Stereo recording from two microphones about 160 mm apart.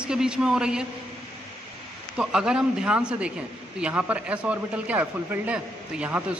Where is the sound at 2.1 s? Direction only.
5° right (ahead or behind).